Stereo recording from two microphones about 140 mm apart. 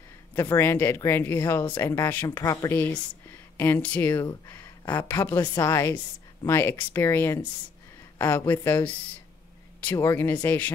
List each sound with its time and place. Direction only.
0.3 s speech: 20° left (ahead or behind)